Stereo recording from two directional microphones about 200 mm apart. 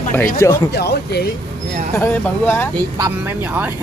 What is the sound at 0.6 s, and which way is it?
Speech, 55° left (ahead or behind).